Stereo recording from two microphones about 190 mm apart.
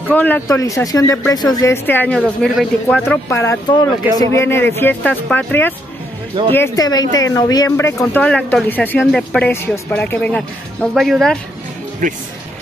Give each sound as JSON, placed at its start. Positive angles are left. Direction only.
{"t": 0.1, "sound": "speech", "side_deg": 10}
{"t": 3.0, "sound": "speech", "side_deg": 15}
{"t": 12.0, "sound": "speech", "side_deg": -40}